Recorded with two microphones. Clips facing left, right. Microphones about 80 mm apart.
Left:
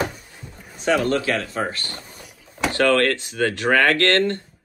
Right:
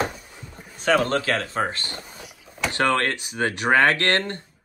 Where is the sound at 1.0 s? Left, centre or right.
Right.